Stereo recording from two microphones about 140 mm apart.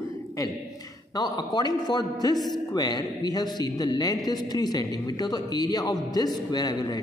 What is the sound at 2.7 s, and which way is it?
A man's voice, 30° left (ahead or behind).